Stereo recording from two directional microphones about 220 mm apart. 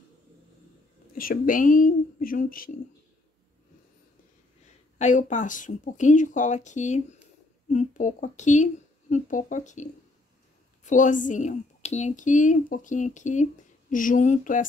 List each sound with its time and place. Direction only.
1.1 s speech: 40° left (ahead or behind)
4.9 s speech: 35° left (ahead or behind)